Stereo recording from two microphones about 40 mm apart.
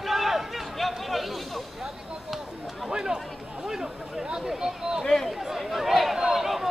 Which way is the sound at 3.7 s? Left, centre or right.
Centre.